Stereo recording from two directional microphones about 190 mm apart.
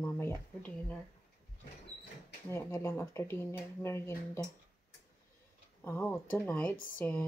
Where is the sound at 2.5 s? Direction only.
15° left (ahead or behind).